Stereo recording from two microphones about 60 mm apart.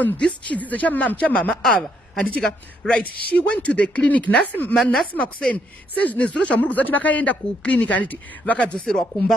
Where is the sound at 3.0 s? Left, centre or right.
Left.